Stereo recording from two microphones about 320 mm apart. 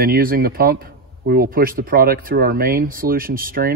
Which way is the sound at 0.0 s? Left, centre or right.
Right.